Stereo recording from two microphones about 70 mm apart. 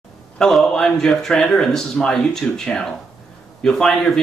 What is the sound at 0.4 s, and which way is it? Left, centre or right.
Speech, centre.